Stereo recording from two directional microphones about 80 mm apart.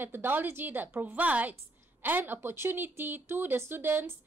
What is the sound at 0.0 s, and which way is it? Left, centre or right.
A woman's voice, right.